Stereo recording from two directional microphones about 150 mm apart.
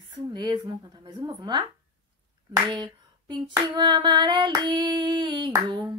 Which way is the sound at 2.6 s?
30° right (ahead or behind).